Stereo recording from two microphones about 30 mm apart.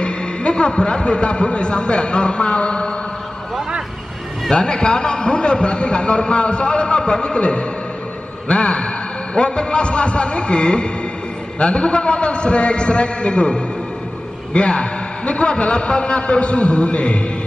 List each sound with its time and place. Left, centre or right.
0.0 s a man's voice: left
4.5 s a man's voice: left